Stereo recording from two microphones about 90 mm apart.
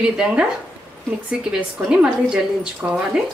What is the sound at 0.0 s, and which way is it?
A woman's voice, 10° right (ahead or behind).